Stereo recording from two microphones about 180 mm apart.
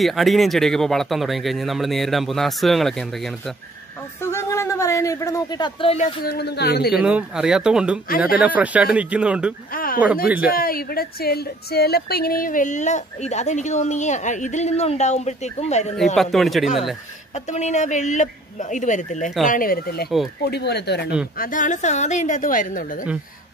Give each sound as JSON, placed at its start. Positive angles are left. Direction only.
{"t": 0.0, "sound": "speech", "side_deg": 0}
{"t": 4.2, "sound": "speech", "side_deg": 15}
{"t": 6.2, "sound": "speech", "side_deg": 65}
{"t": 6.9, "sound": "speech", "side_deg": -5}
{"t": 9.7, "sound": "a sound", "side_deg": 50}
{"t": 10.5, "sound": "a woman's voice", "side_deg": 55}
{"t": 16.2, "sound": "speech", "side_deg": 0}
{"t": 17.3, "sound": "speech", "side_deg": 40}
{"t": 21.4, "sound": "speech", "side_deg": 45}